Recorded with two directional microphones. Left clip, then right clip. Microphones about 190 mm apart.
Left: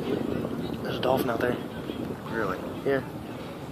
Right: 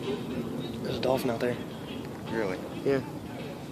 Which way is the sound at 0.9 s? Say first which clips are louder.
Left 2 dB; 30° right (ahead or behind).